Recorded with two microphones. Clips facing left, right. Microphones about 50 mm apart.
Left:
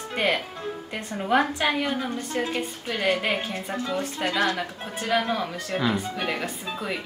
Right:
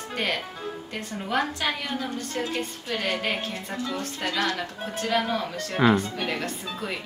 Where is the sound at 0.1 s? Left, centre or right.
Centre.